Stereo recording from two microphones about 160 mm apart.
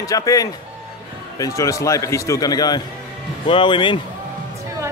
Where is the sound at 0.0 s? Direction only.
20° left (ahead or behind).